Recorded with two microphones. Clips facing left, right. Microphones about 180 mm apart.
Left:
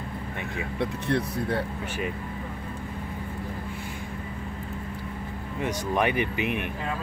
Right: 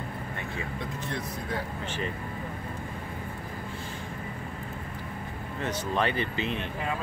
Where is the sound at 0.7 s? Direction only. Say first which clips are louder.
Left 12 dB; 65° left (ahead or behind).